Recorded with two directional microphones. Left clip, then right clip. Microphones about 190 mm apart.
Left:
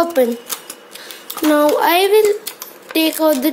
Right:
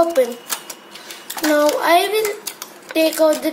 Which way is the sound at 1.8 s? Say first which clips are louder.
Left 3 dB; 45° left (ahead or behind).